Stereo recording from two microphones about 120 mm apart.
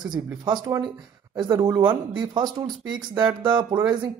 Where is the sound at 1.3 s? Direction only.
40° right (ahead or behind).